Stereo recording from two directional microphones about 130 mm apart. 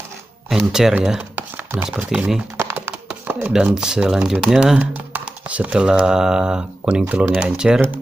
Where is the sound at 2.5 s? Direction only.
15° right (ahead or behind).